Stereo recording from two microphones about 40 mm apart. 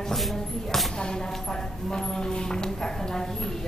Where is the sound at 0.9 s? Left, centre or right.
Centre.